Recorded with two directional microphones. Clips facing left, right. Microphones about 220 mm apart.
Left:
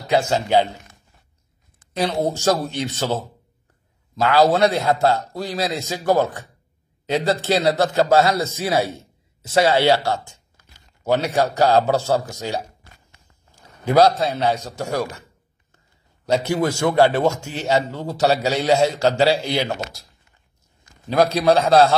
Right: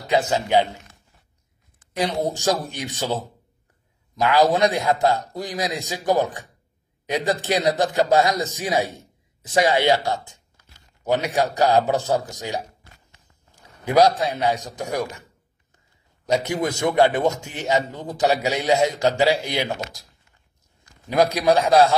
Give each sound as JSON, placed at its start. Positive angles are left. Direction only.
{"t": 0.0, "sound": "a man's voice", "side_deg": -20}
{"t": 2.6, "sound": "a man's voice", "side_deg": -15}
{"t": 4.2, "sound": "a man's voice", "side_deg": -15}
{"t": 16.4, "sound": "a man's voice", "side_deg": -20}
{"t": 21.1, "sound": "a man's voice", "side_deg": -15}